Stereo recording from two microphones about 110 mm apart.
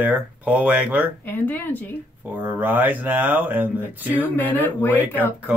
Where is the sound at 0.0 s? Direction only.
15° right (ahead or behind).